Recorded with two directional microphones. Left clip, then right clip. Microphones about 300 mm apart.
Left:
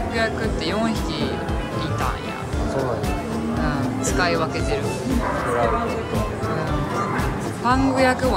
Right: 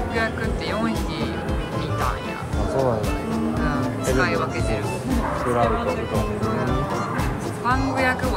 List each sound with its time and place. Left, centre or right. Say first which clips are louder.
3.6 s music: even; centre
7.6 s speech: left 3 dB; centre